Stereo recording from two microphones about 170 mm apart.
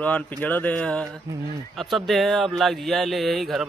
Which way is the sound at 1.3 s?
20° right (ahead or behind).